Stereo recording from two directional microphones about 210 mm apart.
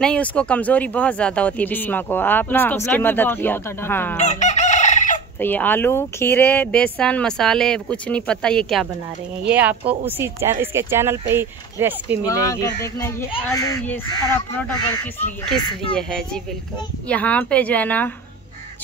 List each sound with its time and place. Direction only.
0.0 s speech: 5° left (ahead or behind)
4.2 s chicken: 35° left (ahead or behind)
5.4 s speech: 10° left (ahead or behind); by 12.3 s 10° right (ahead or behind)
12.3 s speech: 15° left (ahead or behind)